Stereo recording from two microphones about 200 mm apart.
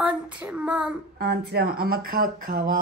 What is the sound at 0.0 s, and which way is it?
Speech, 5° right (ahead or behind).